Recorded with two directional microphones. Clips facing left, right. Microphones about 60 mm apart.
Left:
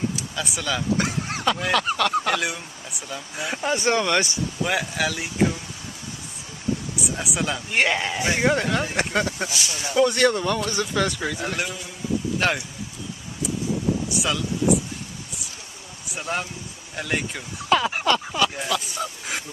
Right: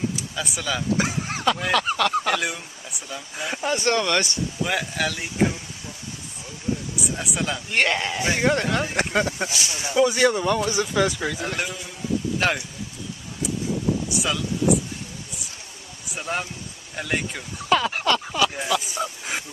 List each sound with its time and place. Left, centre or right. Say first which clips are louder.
0.4 s speech: left 1 dB; centre
7.2 s speech: left 1 dB; centre
9.5 s speech: even; right
9.9 s speech: even; centre
14.1 s speech: even; centre
16.1 s speech: even; centre